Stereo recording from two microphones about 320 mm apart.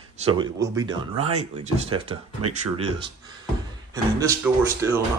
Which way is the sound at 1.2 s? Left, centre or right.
Centre.